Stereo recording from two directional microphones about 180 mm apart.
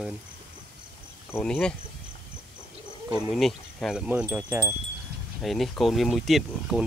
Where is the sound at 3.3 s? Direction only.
Centre (ahead or behind).